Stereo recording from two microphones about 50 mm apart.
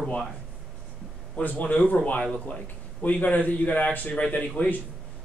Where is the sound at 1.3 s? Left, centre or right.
Left.